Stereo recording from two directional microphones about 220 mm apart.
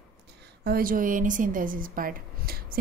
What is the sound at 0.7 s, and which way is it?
A woman's voice, 40° right (ahead or behind).